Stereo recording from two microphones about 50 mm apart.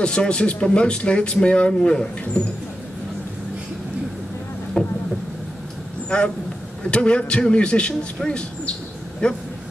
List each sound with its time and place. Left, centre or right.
0.0 s speech: centre
4.8 s speech: centre
6.0 s speech: left